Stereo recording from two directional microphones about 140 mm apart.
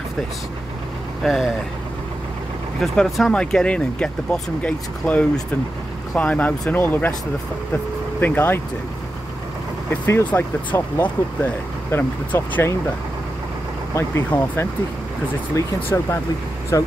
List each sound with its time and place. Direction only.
1.2 s speech: centre (ahead or behind)
2.8 s speech: centre (ahead or behind)
10.0 s speech: 15° left (ahead or behind)
13.9 s speech: 15° left (ahead or behind)